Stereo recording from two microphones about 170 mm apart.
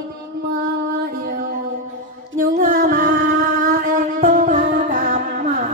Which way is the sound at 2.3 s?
55° right (ahead or behind).